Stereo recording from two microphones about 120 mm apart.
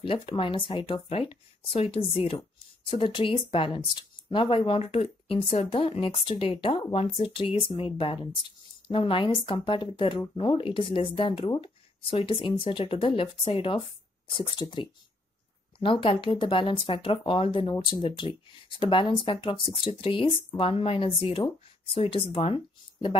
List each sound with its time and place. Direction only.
0.0 s speech: 45° left (ahead or behind)